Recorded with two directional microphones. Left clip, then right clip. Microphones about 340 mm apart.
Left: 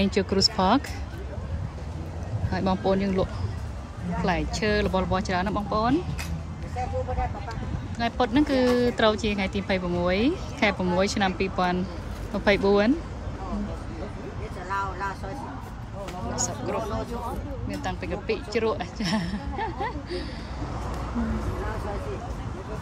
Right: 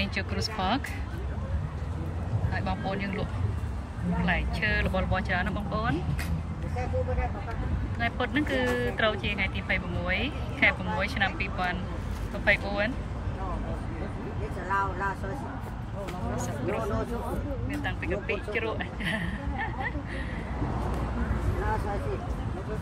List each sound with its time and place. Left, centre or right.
0.0 s speech: centre
2.5 s speech: centre
8.0 s speech: centre
16.3 s speech: centre
17.8 s speech: centre